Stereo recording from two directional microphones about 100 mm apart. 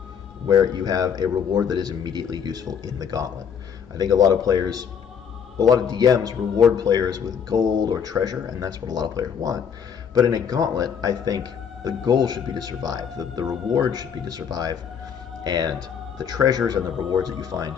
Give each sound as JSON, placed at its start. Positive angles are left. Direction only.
{"t": 0.5, "sound": "speech", "side_deg": -40}